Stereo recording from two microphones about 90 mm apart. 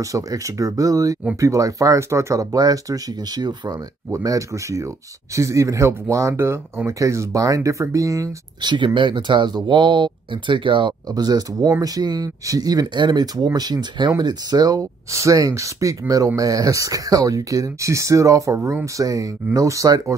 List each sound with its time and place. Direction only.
0.0 s speech: 40° right (ahead or behind)
8.5 s speech: 60° right (ahead or behind)
11.1 s speech: 50° right (ahead or behind)